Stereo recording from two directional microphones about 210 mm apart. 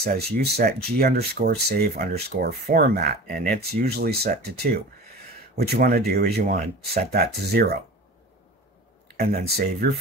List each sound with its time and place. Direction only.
0.0 s speech: 45° right (ahead or behind)
9.1 s speech: 45° right (ahead or behind)